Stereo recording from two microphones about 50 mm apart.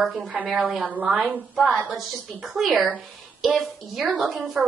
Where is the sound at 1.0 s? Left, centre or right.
Right.